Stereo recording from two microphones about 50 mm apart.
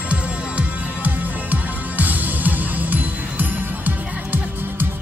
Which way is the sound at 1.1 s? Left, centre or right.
Right.